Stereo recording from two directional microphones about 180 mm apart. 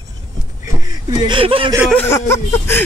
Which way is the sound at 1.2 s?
30° right (ahead or behind).